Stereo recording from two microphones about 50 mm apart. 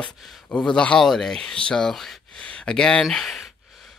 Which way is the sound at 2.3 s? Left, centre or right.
Left.